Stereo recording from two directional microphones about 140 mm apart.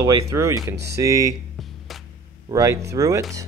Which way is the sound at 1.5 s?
Centre (ahead or behind).